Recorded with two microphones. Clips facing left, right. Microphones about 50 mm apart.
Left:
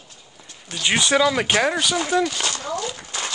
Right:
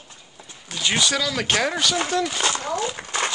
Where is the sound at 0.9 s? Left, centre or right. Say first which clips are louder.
Left 5 dB; left.